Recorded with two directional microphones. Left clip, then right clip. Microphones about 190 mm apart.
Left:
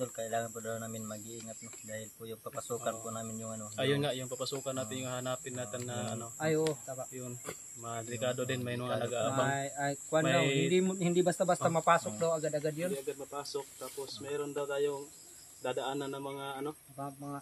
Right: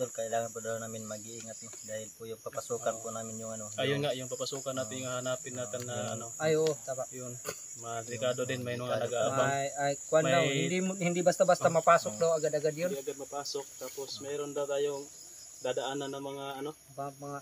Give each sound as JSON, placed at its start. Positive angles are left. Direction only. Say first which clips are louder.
{"t": 0.0, "sound": "speech", "louder": "right 3 dB", "side_deg": -5}
{"t": 3.7, "sound": "speech", "louder": "right 1 dB", "side_deg": 15}
{"t": 6.7, "sound": "speech", "louder": "right 4 dB", "side_deg": -25}
{"t": 7.8, "sound": "speech", "louder": "right 2 dB", "side_deg": 15}
{"t": 9.3, "sound": "speech", "louder": "right 3 dB", "side_deg": -25}
{"t": 10.2, "sound": "speech", "louder": "right 2 dB", "side_deg": 15}
{"t": 10.7, "sound": "speech", "louder": "left 2 dB", "side_deg": -25}
{"t": 12.9, "sound": "speech", "louder": "right 1 dB", "side_deg": 20}